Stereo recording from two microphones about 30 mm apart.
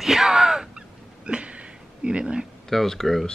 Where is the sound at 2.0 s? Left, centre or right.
Right.